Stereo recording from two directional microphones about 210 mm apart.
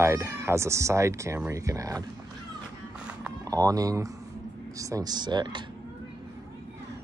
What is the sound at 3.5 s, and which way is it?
Speech, 15° right (ahead or behind).